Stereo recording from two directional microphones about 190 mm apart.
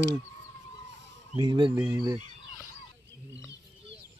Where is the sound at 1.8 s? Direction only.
15° right (ahead or behind).